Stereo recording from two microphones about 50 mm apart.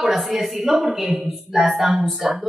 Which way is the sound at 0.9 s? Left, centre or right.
Centre.